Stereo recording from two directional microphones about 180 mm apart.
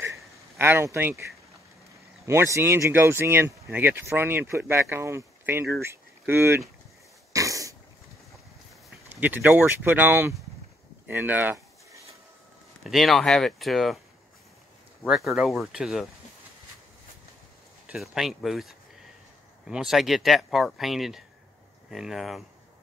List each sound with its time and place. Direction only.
0.0 s a sound: 15° right (ahead or behind)
2.2 s speech: 15° right (ahead or behind)
7.3 s cough: 20° right (ahead or behind)
9.1 s speech: 10° right (ahead or behind)
11.1 s a sound: 10° right (ahead or behind)
12.8 s speech: centre (ahead or behind)
15.0 s speech: centre (ahead or behind)
17.8 s speech: centre (ahead or behind)